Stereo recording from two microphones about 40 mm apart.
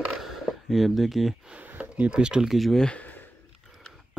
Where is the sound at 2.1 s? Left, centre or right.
Right.